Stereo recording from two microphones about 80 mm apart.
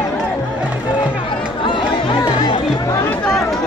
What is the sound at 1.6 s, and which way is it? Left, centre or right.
Chatter, left.